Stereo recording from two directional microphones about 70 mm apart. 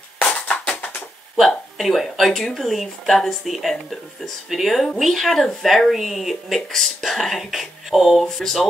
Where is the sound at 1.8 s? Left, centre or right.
Centre.